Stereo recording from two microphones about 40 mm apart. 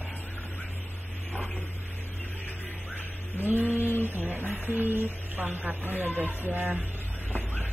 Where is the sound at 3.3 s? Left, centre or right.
Right.